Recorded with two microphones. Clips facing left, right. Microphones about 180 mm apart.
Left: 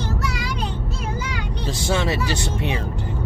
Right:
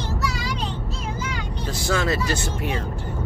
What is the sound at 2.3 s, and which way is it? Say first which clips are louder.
Speech: even; 75° left (ahead or behind).